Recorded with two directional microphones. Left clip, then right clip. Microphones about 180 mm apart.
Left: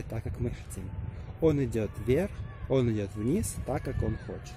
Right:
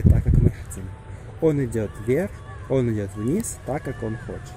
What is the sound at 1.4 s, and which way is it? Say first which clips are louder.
Speech: right 5 dB; 15° left (ahead or behind).